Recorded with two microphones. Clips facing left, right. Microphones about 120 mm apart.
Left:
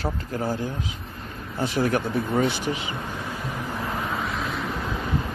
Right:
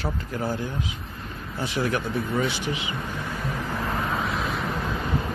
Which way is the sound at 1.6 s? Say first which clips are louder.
Left 3 dB; 45° left (ahead or behind).